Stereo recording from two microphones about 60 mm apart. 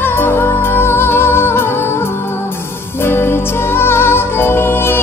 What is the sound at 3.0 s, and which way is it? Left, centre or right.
Music, left.